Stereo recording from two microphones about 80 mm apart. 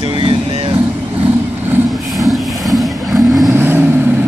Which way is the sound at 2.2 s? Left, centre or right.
Centre.